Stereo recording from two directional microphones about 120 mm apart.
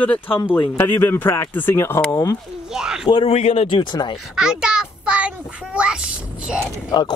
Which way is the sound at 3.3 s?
60° left (ahead or behind).